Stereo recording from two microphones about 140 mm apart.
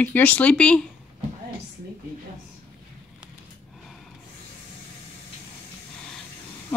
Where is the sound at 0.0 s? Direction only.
10° left (ahead or behind).